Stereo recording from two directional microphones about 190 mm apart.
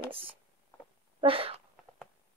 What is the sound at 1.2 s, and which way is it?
Speech, 30° right (ahead or behind).